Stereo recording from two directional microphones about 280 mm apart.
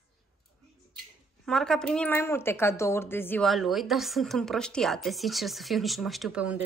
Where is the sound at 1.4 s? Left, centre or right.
Centre.